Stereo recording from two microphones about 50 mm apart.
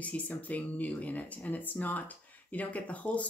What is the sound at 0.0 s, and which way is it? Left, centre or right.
Speech, left.